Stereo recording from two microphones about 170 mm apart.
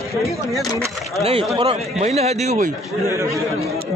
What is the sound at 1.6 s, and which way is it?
Speech, 40° right (ahead or behind).